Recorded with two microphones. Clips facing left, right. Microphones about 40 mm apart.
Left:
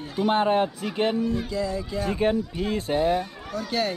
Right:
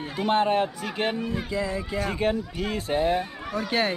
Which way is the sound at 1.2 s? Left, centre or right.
Right.